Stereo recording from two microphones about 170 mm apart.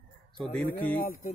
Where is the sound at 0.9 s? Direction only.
55° left (ahead or behind).